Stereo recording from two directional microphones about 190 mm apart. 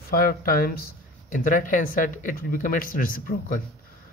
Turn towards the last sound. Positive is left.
turn(degrees=45)  # may be behind; listen again after turning